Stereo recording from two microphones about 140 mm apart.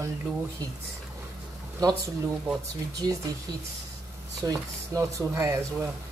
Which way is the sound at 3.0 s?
30° right (ahead or behind).